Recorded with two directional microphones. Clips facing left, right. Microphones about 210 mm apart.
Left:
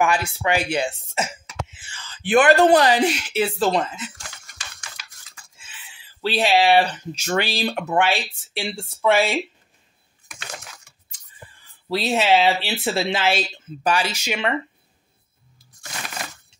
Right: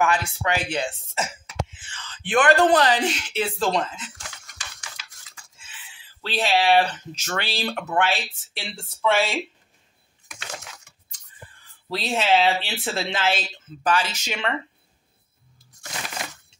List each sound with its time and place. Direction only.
0.0 s speech: 10° left (ahead or behind)
4.6 s a sound: 15° right (ahead or behind)
6.2 s speech: 10° left (ahead or behind)
11.9 s speech: 5° left (ahead or behind)